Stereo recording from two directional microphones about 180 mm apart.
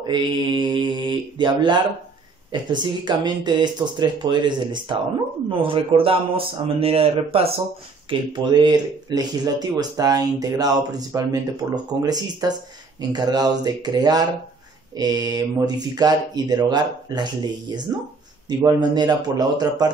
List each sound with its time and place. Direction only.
0.0 s a man's voice: 25° right (ahead or behind)
18.6 s speech: 20° right (ahead or behind)